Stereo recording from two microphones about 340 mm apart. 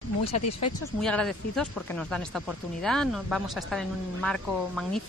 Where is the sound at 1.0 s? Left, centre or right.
Centre.